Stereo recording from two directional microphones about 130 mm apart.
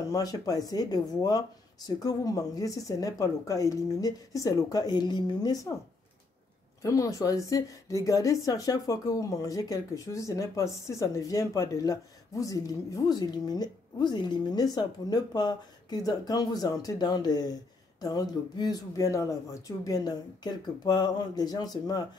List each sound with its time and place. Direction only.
0.1 s a woman's voice: 30° left (ahead or behind)
6.8 s a woman's voice: 25° left (ahead or behind)